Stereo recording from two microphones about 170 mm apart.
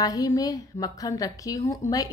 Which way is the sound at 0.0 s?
20° left (ahead or behind).